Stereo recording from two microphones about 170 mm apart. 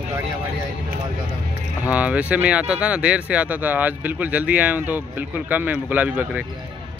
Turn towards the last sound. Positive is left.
turn(degrees=-10)  # may be behind; listen again after turning